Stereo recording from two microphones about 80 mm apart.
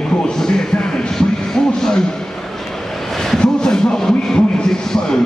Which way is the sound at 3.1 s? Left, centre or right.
Centre.